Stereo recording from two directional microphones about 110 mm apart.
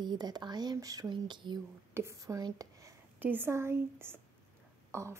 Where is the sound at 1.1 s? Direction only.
45° right (ahead or behind).